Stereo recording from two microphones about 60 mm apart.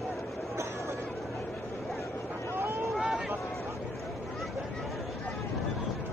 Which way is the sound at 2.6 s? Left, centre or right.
Right.